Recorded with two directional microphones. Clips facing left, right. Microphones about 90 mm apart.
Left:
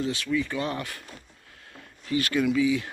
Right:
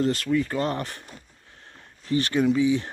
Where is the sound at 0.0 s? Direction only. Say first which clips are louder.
Right 4 dB; 50° right (ahead or behind).